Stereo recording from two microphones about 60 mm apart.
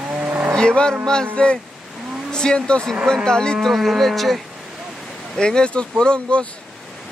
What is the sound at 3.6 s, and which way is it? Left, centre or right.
Livestock, centre.